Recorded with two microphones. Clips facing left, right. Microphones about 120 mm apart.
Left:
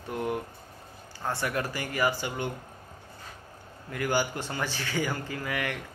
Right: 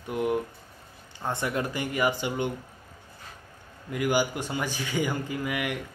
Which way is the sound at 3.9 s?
15° right (ahead or behind).